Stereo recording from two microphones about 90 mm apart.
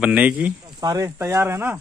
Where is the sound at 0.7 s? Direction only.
40° right (ahead or behind).